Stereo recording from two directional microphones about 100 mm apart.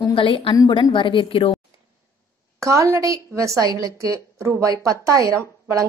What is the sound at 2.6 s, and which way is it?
Speech, 30° right (ahead or behind).